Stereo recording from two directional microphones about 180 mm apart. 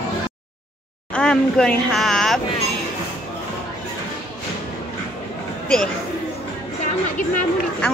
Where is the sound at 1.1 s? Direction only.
5° left (ahead or behind).